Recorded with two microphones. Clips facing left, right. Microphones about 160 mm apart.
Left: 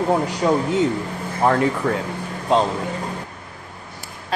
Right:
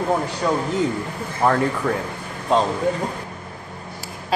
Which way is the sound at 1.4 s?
Centre (ahead or behind).